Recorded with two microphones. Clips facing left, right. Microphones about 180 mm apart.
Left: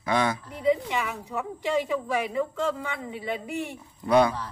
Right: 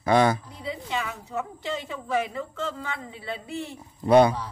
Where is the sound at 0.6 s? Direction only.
15° left (ahead or behind).